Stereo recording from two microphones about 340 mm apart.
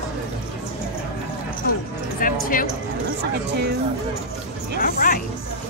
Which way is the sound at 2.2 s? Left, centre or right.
Left.